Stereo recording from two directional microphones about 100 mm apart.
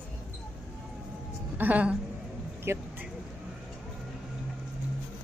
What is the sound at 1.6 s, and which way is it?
Speech, 15° right (ahead or behind).